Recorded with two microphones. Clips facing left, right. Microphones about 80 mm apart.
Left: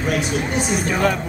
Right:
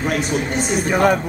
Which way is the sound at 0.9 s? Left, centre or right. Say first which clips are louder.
Right 5 dB; centre.